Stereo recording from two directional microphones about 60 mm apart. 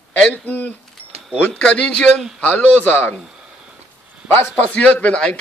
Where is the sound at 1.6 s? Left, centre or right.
Centre; by 3.1 s left.